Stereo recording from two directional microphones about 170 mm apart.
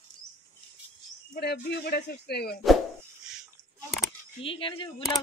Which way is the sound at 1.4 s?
70° left (ahead or behind).